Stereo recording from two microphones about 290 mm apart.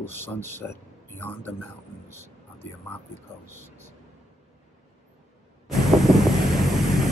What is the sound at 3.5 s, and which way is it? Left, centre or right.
Speech, centre.